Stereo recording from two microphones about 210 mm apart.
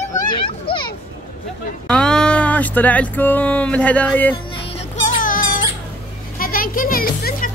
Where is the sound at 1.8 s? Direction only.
5° left (ahead or behind).